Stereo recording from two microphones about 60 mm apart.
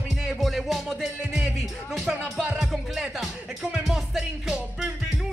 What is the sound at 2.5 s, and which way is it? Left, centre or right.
Music, centre.